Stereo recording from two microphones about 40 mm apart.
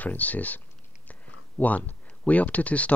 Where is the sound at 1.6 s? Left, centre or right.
Left.